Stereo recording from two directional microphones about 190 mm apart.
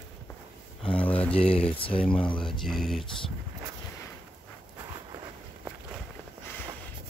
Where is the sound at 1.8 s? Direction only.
30° left (ahead or behind).